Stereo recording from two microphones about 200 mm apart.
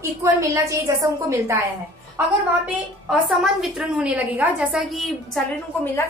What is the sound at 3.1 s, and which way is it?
A woman's voice, centre (ahead or behind).